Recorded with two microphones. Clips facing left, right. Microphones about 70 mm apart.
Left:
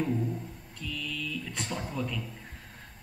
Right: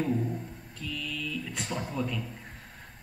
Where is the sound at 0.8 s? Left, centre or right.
Centre.